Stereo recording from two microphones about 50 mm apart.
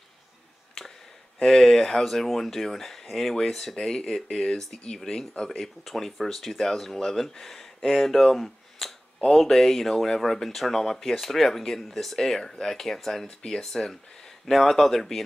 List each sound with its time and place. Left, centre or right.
1.4 s speech: centre
5.6 s speech: centre